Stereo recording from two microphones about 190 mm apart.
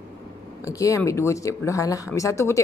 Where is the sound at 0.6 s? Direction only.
15° left (ahead or behind).